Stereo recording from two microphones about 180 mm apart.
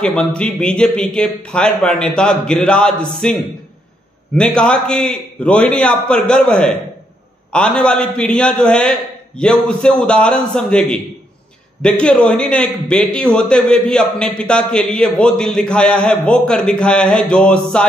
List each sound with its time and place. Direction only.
0.0 s a man's voice: 5° left (ahead or behind)
4.4 s a man's voice: 5° left (ahead or behind)